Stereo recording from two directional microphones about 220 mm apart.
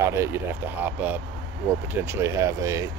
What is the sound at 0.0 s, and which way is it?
Speech, 10° right (ahead or behind).